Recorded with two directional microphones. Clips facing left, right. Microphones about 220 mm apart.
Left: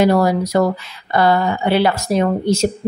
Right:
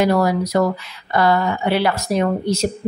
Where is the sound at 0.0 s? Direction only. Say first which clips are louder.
Left 2 dB; 30° left (ahead or behind).